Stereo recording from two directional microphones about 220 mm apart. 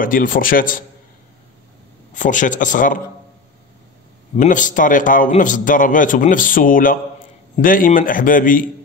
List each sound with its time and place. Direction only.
0.0 s a man's voice: 40° left (ahead or behind)
2.1 s a man's voice: 35° left (ahead or behind)
4.4 s a man's voice: 35° left (ahead or behind)